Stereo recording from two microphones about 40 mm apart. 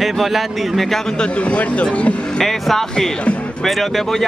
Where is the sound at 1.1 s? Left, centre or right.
Left.